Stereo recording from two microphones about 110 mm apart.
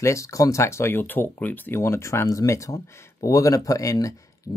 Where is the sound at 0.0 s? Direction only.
30° left (ahead or behind).